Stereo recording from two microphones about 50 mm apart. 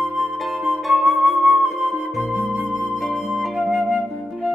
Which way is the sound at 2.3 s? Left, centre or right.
Right.